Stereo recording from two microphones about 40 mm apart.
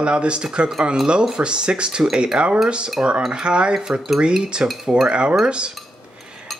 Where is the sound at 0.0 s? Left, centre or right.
Right.